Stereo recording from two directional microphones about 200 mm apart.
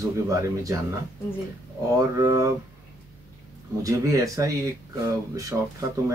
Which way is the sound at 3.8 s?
15° right (ahead or behind).